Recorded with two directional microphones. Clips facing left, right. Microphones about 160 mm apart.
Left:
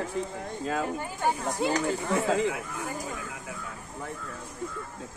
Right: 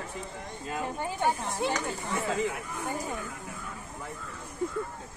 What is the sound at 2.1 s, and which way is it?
Speech, 90° left.